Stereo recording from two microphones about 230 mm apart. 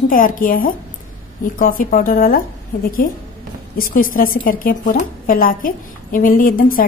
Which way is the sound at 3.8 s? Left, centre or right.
Left.